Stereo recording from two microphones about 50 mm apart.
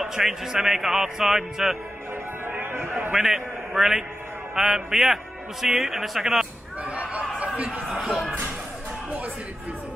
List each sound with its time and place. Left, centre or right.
0.0 s a man's voice: centre
2.4 s music: right
3.2 s a man's voice: centre
6.8 s speech: right
7.9 s a man's voice: centre